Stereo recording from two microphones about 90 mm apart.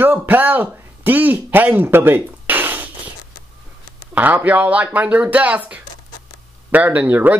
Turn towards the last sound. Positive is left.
turn(degrees=-20)  # may be behind; listen again after turning